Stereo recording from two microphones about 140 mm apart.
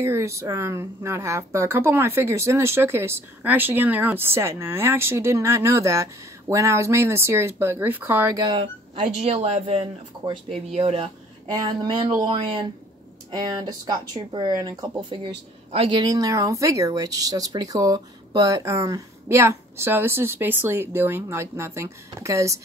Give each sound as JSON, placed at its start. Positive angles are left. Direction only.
{"t": 0.0, "sound": "speech", "side_deg": -20}
{"t": 8.4, "sound": "speech", "side_deg": -35}
{"t": 11.5, "sound": "speech", "side_deg": -30}